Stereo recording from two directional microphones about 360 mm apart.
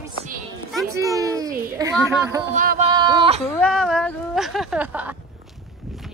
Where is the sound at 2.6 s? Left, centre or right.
Centre.